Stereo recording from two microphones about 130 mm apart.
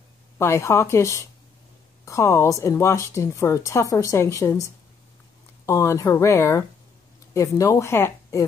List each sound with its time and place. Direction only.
0.4 s a woman's voice: 20° left (ahead or behind)
5.7 s a woman's voice: 25° left (ahead or behind)